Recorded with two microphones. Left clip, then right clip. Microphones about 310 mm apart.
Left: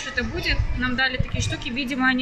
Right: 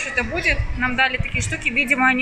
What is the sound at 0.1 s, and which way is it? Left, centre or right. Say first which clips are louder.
Speech: right 4 dB; centre.